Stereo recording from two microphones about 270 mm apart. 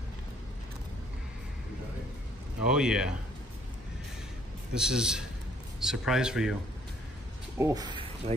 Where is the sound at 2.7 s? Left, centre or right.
Centre.